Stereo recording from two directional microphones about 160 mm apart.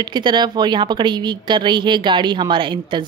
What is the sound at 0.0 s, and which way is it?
Speech, 30° right (ahead or behind).